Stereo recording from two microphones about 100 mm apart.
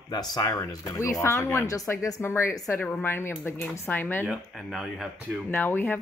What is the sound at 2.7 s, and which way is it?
Speech, 15° left (ahead or behind).